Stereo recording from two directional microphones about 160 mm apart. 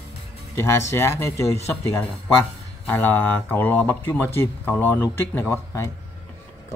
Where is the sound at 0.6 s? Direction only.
15° left (ahead or behind).